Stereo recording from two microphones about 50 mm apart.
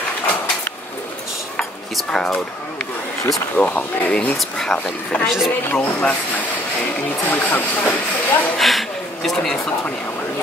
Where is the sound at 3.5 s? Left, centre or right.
Left.